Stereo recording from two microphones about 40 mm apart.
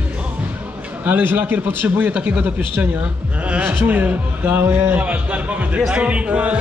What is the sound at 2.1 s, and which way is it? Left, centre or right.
A man's voice, right.